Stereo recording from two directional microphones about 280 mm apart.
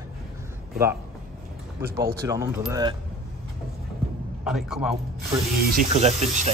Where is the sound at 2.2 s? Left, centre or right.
Centre.